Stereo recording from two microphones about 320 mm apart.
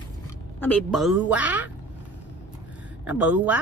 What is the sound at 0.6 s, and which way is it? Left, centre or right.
Speech, centre.